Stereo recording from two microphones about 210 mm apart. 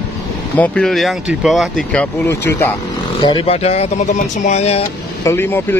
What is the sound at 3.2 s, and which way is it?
Speech, 25° left (ahead or behind).